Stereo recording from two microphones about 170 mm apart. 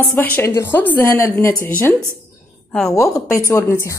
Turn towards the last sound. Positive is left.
turn(degrees=15)  # may be behind; listen again after turning